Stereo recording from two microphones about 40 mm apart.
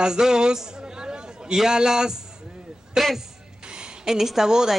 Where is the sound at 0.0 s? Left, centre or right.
Centre.